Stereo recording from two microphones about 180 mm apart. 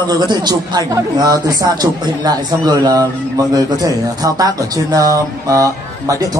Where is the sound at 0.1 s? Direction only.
25° right (ahead or behind).